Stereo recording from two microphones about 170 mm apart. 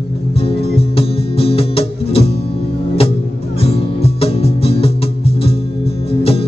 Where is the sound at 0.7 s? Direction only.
35° left (ahead or behind).